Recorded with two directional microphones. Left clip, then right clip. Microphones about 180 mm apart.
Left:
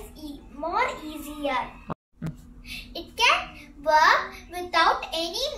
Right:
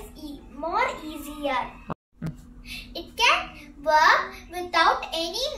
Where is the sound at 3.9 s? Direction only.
15° right (ahead or behind).